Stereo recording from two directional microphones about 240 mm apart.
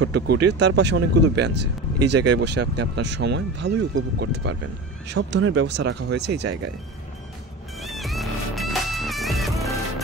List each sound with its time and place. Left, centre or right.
0.0 s speech: right
7.8 s music: centre